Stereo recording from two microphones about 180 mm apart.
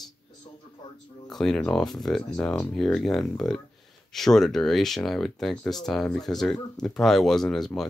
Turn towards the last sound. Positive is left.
turn(degrees=0)  # may be behind; listen again after turning